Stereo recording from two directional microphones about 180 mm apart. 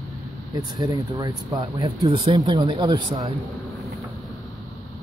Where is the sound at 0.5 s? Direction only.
25° right (ahead or behind).